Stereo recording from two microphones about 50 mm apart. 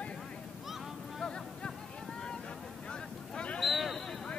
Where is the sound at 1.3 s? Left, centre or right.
Centre.